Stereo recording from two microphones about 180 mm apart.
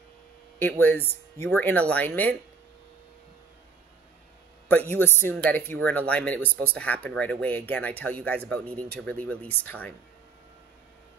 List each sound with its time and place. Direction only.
0.6 s speech: 10° left (ahead or behind)
4.6 s speech: 10° left (ahead or behind)